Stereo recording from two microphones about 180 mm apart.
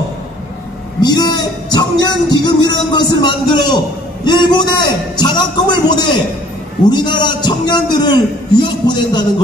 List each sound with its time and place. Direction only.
1.0 s a man's voice: 25° left (ahead or behind)